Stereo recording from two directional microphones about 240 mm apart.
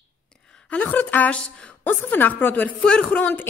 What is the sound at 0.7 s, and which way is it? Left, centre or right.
A woman's voice, centre.